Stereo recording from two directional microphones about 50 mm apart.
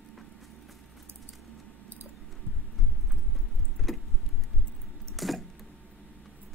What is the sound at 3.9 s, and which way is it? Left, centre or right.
Vehicle, centre.